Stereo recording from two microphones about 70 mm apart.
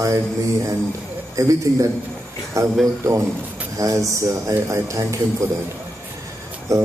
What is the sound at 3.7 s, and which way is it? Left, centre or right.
Speech, right.